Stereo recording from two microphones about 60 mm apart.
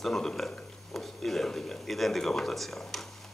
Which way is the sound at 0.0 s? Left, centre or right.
Centre.